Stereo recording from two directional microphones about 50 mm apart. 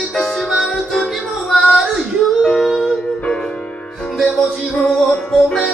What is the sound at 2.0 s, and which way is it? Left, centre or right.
Music, centre.